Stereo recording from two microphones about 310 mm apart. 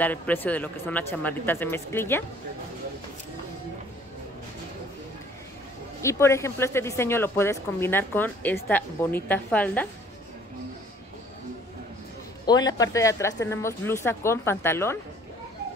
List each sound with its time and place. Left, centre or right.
0.0 s speech: centre
6.0 s a woman's voice: centre
12.4 s speech: centre